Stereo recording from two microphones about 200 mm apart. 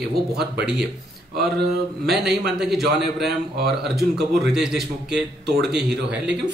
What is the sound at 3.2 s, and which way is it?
Speech, 55° right (ahead or behind).